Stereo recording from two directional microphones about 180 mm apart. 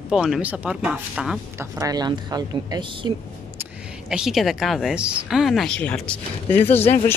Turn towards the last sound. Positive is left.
turn(degrees=10)  # may be behind; listen again after turning